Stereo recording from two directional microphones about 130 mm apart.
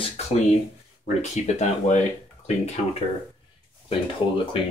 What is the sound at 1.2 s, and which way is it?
Speech, 60° left (ahead or behind).